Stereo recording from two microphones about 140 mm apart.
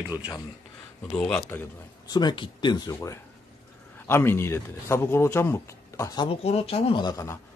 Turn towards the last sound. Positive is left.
turn(degrees=25)  # may be behind; listen again after turning